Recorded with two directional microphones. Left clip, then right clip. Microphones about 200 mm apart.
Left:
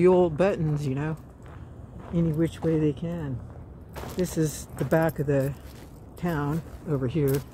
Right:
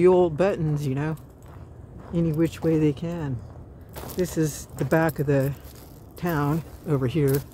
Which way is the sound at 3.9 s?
5° right (ahead or behind).